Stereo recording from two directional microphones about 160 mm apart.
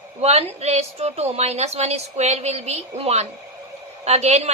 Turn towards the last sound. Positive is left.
turn(degrees=-45)  # may be behind; listen again after turning